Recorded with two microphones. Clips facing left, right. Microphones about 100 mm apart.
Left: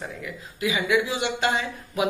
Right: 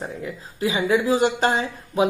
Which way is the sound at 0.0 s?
30° right (ahead or behind).